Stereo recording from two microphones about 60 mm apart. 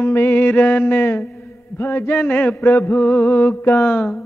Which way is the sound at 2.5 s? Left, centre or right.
Left.